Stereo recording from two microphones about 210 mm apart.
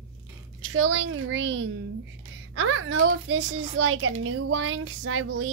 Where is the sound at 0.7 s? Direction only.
70° right (ahead or behind).